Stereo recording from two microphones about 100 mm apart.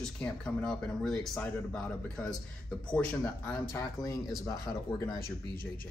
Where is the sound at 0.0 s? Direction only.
10° left (ahead or behind).